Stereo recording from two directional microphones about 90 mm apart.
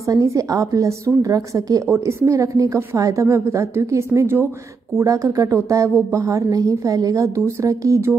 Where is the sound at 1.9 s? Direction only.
25° right (ahead or behind).